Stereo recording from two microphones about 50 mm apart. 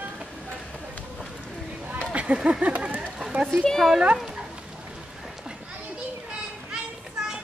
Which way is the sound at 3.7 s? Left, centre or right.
Centre.